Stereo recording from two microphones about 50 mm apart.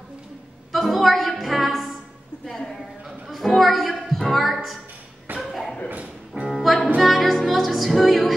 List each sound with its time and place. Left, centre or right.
0.7 s music: centre
2.4 s a sound: centre
3.3 s music: centre
5.4 s a sound: centre
5.9 s music: right
6.5 s music: centre